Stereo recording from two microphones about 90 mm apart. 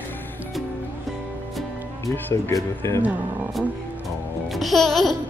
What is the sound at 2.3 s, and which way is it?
Speech, 35° left (ahead or behind).